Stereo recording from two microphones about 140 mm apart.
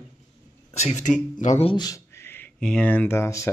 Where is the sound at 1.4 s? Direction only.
60° left (ahead or behind).